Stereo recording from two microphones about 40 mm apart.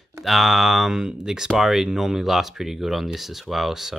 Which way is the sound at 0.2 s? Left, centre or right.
Centre.